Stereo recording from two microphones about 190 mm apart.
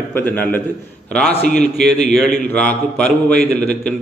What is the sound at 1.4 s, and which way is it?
Speech, 60° right (ahead or behind).